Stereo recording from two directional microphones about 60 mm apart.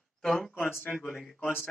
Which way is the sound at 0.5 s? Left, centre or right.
Left.